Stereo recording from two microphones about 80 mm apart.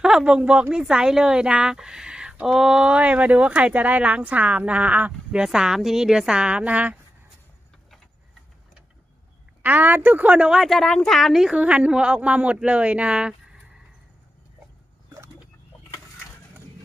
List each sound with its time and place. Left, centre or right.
0.0 s a woman's voice: centre
5.4 s a woman's voice: centre
9.6 s a woman's voice: right